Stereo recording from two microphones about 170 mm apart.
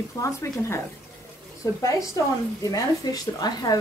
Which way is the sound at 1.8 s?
20° left (ahead or behind).